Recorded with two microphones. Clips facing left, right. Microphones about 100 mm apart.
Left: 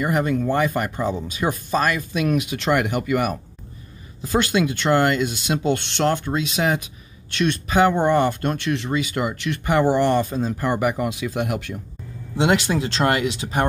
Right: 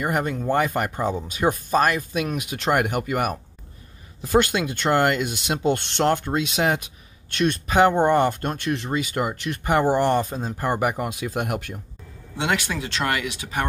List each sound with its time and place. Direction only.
0.0 s speech: 50° right (ahead or behind)
4.4 s speech: 50° right (ahead or behind)
12.4 s speech: 25° left (ahead or behind)